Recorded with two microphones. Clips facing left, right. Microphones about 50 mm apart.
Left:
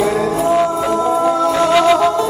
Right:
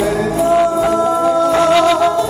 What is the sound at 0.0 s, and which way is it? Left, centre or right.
Music, centre.